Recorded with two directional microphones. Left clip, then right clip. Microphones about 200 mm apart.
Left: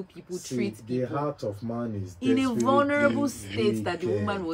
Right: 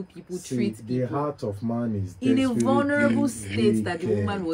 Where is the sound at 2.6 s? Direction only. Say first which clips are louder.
Left 1 dB; 10° left (ahead or behind).